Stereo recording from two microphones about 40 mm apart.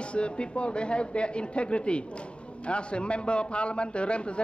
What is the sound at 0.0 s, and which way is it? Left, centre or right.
Speech, left.